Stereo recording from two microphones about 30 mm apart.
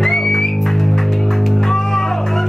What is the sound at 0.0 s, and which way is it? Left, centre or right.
Music, centre.